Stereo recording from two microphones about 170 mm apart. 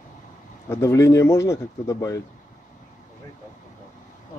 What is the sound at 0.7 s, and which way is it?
Speech, 15° left (ahead or behind).